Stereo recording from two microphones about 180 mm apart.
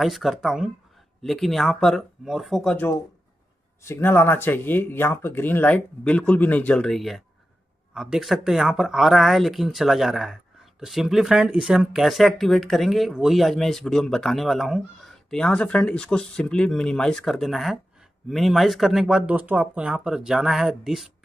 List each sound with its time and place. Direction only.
0.0 s speech: centre (ahead or behind)